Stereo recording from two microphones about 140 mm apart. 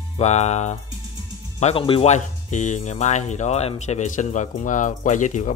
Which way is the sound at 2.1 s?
60° left (ahead or behind).